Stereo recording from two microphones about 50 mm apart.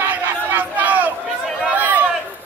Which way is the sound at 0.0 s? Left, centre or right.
Right.